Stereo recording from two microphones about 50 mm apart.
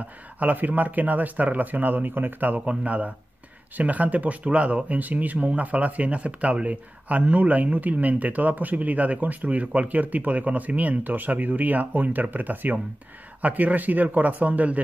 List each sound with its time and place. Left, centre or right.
0.4 s speech: right